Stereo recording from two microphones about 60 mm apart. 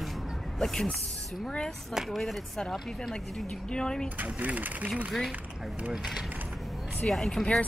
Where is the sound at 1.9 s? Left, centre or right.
Centre.